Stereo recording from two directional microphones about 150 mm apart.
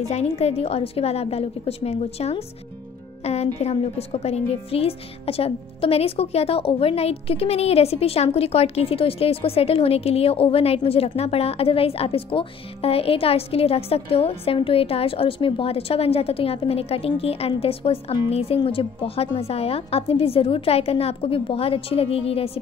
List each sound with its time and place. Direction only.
0.1 s a woman's voice: 45° left (ahead or behind)